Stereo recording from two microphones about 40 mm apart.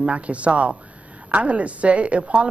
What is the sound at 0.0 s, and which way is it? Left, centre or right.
Speech, right.